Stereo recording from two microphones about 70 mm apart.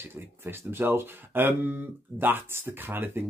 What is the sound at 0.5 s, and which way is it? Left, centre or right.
Speech, right.